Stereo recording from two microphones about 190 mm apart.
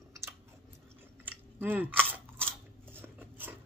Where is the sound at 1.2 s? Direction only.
10° right (ahead or behind).